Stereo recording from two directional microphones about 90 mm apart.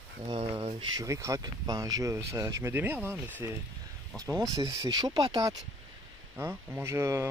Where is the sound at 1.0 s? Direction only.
35° right (ahead or behind).